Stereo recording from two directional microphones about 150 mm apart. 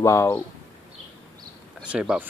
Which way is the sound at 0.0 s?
20° left (ahead or behind).